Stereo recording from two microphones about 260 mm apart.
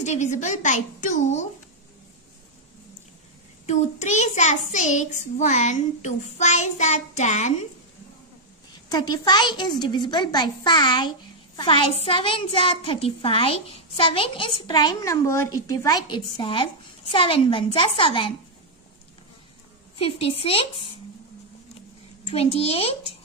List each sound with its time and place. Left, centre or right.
0.0 s a child's voice: left
3.6 s a child's voice: left
8.8 s a woman's voice: centre
20.0 s a child's voice: left
22.2 s a child's voice: left